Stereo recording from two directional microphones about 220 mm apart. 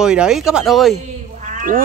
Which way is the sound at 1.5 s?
35° right (ahead or behind).